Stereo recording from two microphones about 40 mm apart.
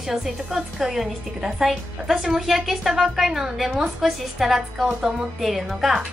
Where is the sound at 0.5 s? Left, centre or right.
Right.